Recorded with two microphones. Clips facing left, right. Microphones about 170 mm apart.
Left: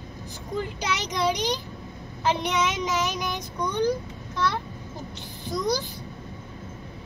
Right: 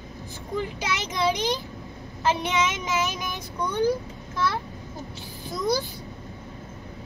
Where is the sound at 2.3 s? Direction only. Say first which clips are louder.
Even; 5° right (ahead or behind).